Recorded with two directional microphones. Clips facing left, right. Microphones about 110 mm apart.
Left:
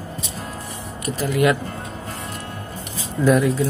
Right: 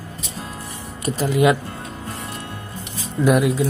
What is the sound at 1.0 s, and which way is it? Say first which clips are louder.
Speech: right 2 dB; 20° right (ahead or behind).